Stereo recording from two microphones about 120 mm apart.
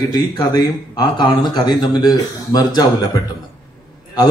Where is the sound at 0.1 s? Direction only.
35° left (ahead or behind).